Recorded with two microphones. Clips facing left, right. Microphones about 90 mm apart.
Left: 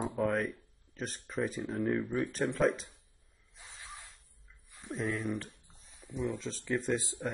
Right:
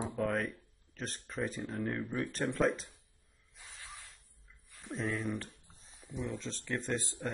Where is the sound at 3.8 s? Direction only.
20° left (ahead or behind).